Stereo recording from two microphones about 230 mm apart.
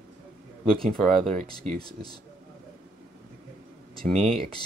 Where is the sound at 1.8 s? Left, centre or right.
Centre.